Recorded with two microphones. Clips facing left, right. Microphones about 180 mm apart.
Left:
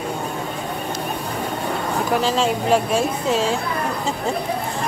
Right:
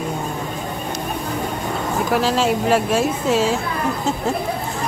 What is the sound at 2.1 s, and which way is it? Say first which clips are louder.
Speech: right 2 dB; centre (ahead or behind).